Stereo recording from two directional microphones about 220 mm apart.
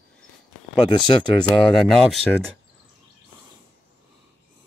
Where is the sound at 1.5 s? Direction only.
Centre (ahead or behind).